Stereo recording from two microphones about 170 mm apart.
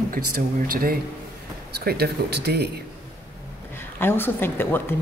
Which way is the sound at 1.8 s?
70° right (ahead or behind).